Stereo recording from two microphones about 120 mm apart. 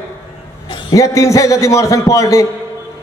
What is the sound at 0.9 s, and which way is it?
A man's voice, 25° left (ahead or behind).